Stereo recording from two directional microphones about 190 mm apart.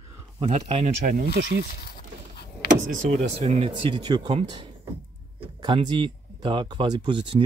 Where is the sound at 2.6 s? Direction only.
55° left (ahead or behind).